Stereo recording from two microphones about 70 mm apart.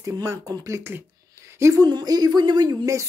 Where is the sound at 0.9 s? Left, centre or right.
Right.